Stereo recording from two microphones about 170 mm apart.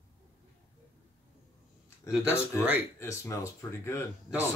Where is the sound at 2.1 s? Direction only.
10° right (ahead or behind).